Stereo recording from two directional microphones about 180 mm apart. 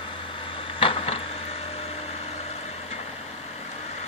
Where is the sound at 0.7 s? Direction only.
30° left (ahead or behind).